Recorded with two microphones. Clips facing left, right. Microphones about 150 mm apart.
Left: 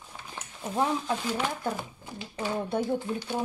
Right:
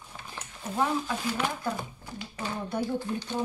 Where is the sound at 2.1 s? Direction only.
25° left (ahead or behind).